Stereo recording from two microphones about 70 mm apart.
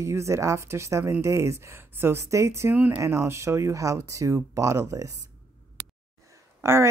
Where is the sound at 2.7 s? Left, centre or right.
Right.